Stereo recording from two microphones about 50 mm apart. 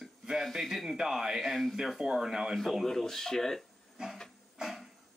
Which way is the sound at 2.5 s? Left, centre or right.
Centre.